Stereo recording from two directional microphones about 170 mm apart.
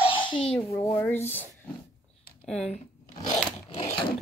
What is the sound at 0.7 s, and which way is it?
Speech, 15° left (ahead or behind).